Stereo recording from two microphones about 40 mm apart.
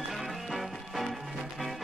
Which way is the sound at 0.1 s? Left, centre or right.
Centre.